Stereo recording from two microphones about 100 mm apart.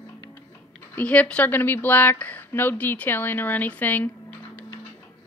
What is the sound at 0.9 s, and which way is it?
Speech, 15° left (ahead or behind).